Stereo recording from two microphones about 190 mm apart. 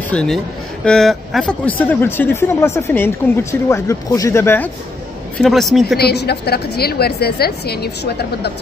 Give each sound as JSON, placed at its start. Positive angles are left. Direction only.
{"t": 0.1, "sound": "speech", "side_deg": 5}
{"t": 5.4, "sound": "speech", "side_deg": 0}
{"t": 5.9, "sound": "a woman's voice", "side_deg": 55}